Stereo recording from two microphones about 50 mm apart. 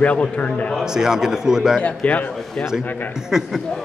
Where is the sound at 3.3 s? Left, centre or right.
Centre.